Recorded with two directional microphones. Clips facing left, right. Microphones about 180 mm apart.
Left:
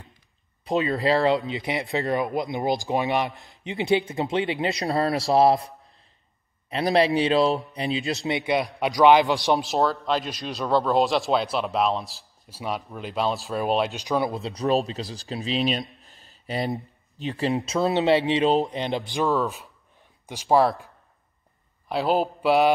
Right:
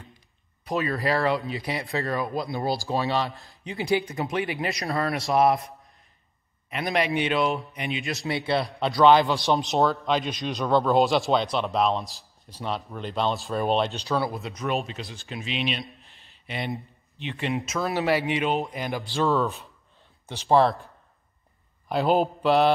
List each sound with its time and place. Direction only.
0.7 s speech: 25° left (ahead or behind)
6.7 s speech: 35° left (ahead or behind); by 9.4 s 15° left (ahead or behind)
9.6 s speech: centre (ahead or behind)
14.0 s speech: 20° left (ahead or behind)
14.4 s speech: 35° left (ahead or behind)
16.0 s a sound: 35° left (ahead or behind)
17.6 s speech: 25° left (ahead or behind)
19.2 s speech: centre (ahead or behind)
21.8 s a man's voice: centre (ahead or behind)